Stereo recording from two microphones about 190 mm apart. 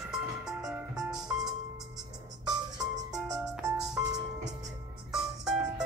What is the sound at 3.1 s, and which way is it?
Music, 5° right (ahead or behind).